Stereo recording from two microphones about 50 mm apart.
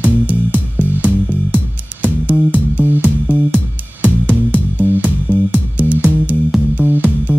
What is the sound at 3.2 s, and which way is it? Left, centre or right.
Music, right.